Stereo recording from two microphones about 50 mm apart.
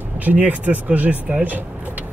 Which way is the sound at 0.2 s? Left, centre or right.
Right.